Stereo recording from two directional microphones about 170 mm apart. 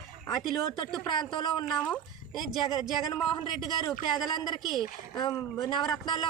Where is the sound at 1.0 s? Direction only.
25° left (ahead or behind).